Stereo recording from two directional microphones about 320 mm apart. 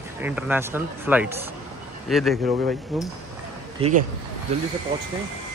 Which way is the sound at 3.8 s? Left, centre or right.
Centre.